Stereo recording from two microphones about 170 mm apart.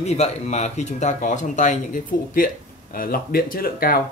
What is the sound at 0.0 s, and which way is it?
Speech, 40° left (ahead or behind).